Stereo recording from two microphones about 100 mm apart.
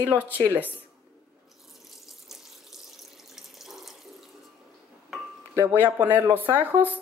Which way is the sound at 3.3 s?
Centre (ahead or behind).